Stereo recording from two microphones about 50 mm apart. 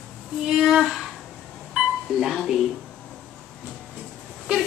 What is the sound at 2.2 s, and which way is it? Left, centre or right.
Speech, centre.